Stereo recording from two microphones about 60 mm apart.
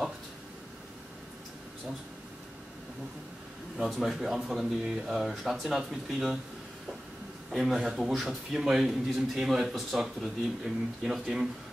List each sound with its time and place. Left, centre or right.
3.8 s a man's voice: centre
7.5 s a man's voice: centre